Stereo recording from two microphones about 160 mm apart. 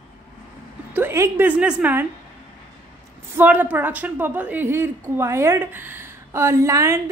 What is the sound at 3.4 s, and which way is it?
A woman's voice, 10° right (ahead or behind).